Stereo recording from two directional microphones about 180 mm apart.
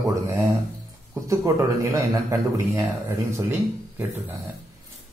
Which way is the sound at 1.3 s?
15° right (ahead or behind).